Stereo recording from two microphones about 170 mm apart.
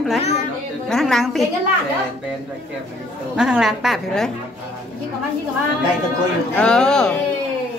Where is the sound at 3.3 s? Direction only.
5° right (ahead or behind).